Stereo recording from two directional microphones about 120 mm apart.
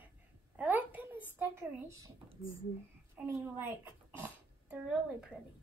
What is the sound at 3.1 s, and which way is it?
Speech, 15° right (ahead or behind).